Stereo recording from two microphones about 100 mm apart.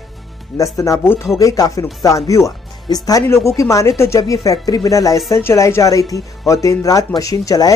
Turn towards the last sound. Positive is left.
turn(degrees=35)  # may be behind; listen again after turning